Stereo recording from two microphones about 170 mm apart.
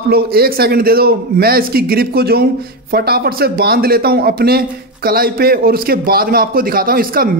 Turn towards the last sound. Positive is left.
turn(degrees=-60)  # may be behind; listen again after turning